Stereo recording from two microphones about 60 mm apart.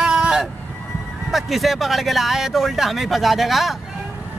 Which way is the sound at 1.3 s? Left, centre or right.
Centre.